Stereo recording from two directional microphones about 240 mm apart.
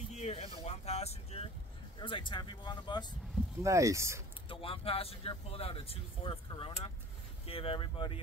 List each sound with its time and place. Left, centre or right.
0.1 s vehicle: left
2.0 s speech: centre
3.6 s speech: centre
4.5 s speech: left